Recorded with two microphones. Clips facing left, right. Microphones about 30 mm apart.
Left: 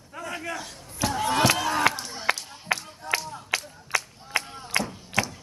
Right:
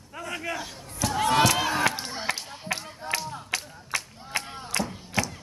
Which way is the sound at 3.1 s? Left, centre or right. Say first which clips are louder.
Left 3 dB; left.